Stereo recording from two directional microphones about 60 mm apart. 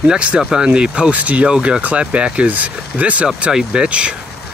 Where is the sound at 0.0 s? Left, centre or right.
Centre.